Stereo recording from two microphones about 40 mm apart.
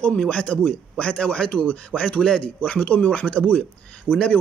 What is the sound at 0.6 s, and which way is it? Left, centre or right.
Speech, left.